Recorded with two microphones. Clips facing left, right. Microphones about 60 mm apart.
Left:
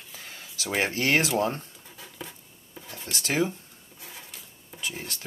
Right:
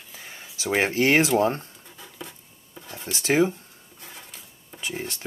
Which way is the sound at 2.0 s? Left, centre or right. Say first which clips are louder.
Right 1 dB; centre.